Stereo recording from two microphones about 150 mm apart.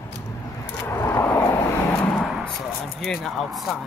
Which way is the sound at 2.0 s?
Centre (ahead or behind).